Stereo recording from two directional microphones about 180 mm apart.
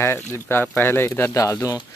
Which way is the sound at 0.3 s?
15° left (ahead or behind).